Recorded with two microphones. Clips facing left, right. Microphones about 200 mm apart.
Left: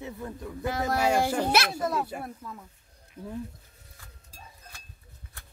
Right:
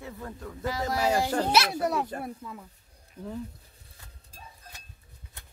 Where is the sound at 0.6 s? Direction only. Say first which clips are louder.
Left 1 dB; 55° left (ahead or behind).